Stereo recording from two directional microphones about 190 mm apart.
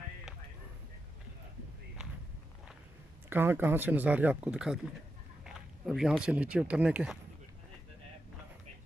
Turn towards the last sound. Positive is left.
turn(degrees=-5)  # may be behind; listen again after turning